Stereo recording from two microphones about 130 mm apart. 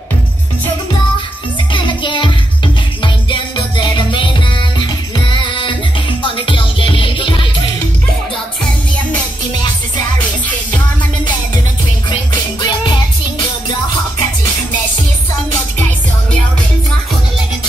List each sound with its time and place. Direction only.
1.7 s music: 40° left (ahead or behind)
12.6 s music: 35° left (ahead or behind)